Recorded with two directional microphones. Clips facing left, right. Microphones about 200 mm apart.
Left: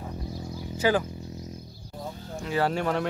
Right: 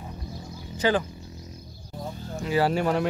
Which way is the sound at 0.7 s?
10° left (ahead or behind).